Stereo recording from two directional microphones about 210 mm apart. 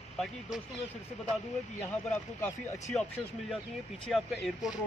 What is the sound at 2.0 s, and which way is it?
Speech, 5° left (ahead or behind).